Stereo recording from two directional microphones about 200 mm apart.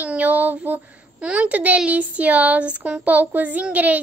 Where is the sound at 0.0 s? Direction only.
5° right (ahead or behind).